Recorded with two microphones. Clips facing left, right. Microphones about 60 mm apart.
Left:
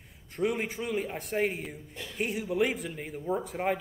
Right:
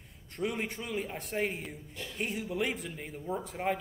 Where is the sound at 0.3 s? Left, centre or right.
Centre.